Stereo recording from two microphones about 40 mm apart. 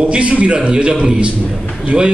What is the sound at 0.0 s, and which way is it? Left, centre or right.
A man's voice, right.